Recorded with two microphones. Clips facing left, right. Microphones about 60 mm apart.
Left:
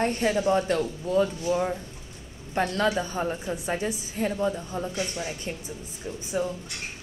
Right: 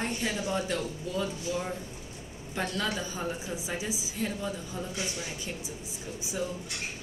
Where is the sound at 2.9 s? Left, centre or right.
Left.